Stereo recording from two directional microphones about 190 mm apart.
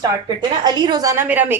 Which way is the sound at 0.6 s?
20° right (ahead or behind).